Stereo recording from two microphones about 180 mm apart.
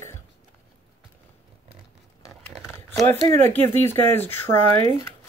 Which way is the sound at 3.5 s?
10° left (ahead or behind).